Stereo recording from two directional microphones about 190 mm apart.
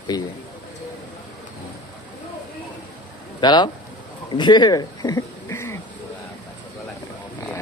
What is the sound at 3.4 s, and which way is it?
Speech, 25° left (ahead or behind).